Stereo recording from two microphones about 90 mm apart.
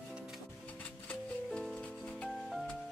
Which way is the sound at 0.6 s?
20° left (ahead or behind).